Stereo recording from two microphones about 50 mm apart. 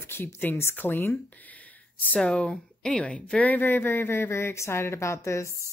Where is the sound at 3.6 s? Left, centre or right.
Left.